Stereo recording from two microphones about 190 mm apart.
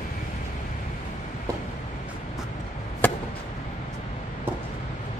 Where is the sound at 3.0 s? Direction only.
10° left (ahead or behind).